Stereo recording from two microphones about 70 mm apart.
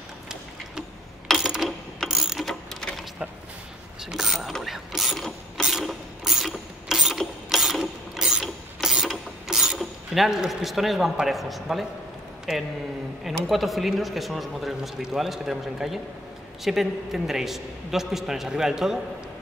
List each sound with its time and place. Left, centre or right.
1.2 s a sound: centre
2.0 s mechanisms: centre
4.0 s mechanisms: centre
9.5 s a man's voice: centre